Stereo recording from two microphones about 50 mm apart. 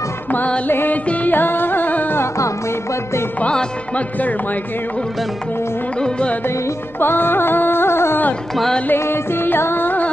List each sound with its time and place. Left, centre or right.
0.7 s carnatic music: left
1.3 s music: left
3.9 s speech: left
5.9 s music: centre
7.0 s carnatic music: left
8.9 s music: left